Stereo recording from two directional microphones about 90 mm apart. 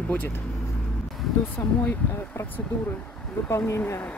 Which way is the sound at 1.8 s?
20° left (ahead or behind).